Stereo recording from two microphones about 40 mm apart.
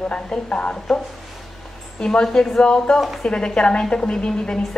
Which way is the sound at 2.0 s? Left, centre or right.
Left.